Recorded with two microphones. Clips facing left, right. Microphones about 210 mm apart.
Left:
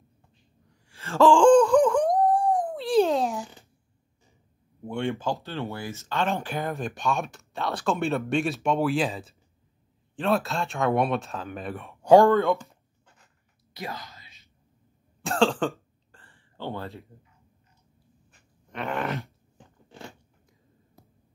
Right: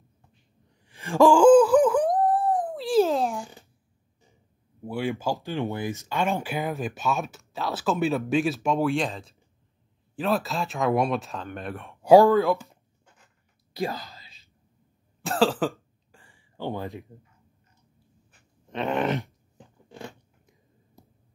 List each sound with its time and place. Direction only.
0.8 s groan: 15° right (ahead or behind); by 3.4 s centre (ahead or behind)
4.8 s speech: 5° right (ahead or behind)
13.7 s whispering: 30° right (ahead or behind)
15.2 s throat clearing: 5° right (ahead or behind)
18.7 s groan: 20° right (ahead or behind)